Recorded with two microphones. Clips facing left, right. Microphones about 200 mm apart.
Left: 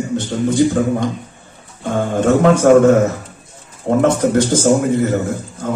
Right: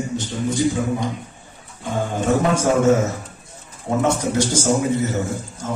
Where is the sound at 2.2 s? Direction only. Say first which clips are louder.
Left 7 dB; 60° left (ahead or behind).